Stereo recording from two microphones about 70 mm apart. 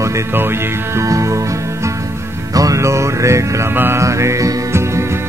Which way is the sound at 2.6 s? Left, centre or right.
Right.